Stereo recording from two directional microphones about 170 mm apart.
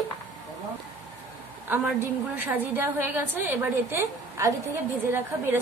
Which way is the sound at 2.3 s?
10° right (ahead or behind).